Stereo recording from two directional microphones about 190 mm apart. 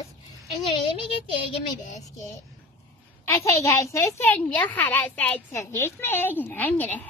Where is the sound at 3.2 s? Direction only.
15° left (ahead or behind).